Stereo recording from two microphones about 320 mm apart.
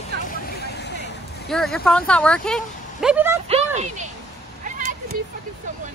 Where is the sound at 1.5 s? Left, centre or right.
Centre.